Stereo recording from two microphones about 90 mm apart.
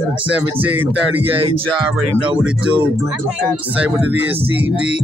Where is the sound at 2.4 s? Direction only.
15° right (ahead or behind).